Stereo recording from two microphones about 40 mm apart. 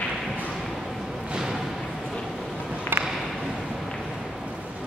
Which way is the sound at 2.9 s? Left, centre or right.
Right.